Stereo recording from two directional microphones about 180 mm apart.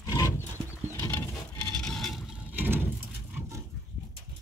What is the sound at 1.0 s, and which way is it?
Patter, 15° left (ahead or behind).